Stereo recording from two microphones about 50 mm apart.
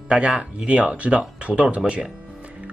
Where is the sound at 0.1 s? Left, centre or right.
Right.